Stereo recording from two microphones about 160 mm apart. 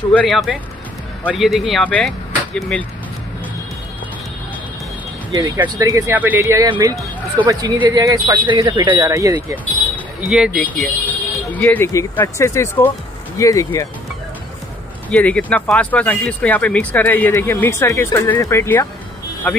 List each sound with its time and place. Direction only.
0.1 s speech: 5° left (ahead or behind)
5.6 s speech: 20° right (ahead or behind)
10.3 s speech: 5° right (ahead or behind)
10.6 s speech: 10° left (ahead or behind)
15.0 s speech: 10° left (ahead or behind)